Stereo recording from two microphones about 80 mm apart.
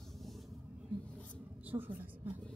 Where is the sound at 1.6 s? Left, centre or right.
Right.